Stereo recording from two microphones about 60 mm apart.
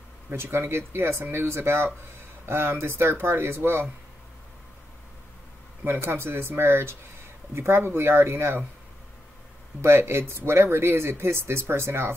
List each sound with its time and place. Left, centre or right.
0.3 s speech: right
5.9 s speech: right
9.8 s speech: right